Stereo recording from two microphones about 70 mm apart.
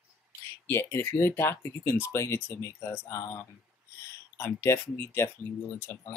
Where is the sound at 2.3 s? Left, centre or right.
Left.